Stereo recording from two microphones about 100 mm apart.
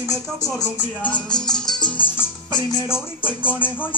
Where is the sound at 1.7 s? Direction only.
50° left (ahead or behind).